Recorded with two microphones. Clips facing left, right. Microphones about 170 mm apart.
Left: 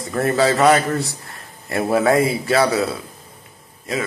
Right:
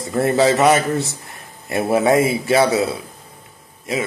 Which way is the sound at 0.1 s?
25° right (ahead or behind).